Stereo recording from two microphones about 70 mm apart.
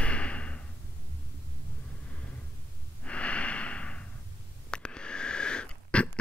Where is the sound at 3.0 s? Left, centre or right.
Centre.